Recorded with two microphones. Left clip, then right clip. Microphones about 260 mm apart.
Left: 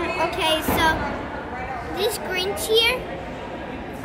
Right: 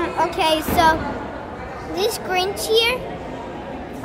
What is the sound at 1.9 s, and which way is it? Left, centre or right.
A child's voice, right.